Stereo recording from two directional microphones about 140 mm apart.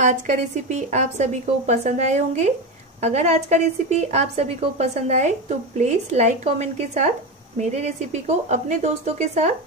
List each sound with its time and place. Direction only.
0.0 s a woman's voice: 60° right (ahead or behind)